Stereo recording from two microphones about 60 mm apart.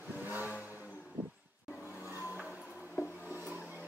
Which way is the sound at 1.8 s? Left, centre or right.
Left.